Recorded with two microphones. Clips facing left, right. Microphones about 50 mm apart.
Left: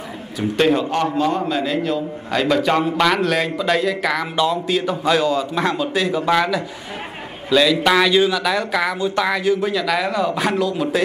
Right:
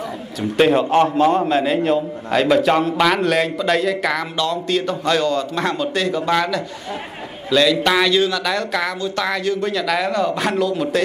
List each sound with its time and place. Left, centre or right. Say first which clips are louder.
0.7 s a man's voice: right 4 dB; centre